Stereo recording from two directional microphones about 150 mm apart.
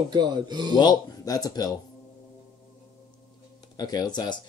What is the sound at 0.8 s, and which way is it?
Speech, 25° left (ahead or behind).